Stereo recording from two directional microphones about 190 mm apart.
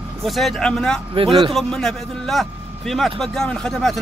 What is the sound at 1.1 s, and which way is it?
Speech, 30° right (ahead or behind).